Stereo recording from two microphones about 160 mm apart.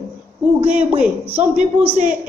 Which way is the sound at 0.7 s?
10° right (ahead or behind).